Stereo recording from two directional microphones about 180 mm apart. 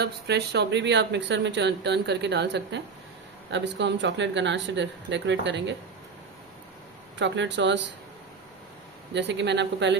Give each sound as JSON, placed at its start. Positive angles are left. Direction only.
{"t": 0.0, "sound": "speech", "side_deg": -65}
{"t": 7.2, "sound": "speech", "side_deg": -80}
{"t": 9.1, "sound": "speech", "side_deg": -75}